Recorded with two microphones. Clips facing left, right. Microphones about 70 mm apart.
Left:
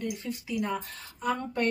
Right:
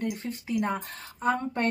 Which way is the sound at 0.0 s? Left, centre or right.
Right.